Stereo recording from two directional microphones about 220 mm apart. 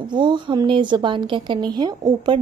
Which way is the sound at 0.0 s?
20° right (ahead or behind).